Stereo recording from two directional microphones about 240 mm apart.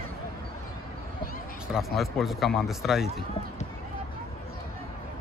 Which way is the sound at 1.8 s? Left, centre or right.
Centre.